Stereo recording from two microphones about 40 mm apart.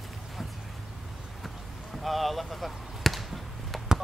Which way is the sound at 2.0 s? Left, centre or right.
Centre.